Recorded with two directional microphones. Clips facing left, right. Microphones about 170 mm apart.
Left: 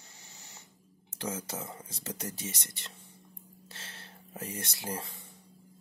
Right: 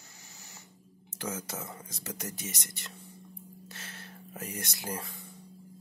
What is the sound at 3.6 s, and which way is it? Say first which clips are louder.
Whispering: even; 30° left (ahead or behind).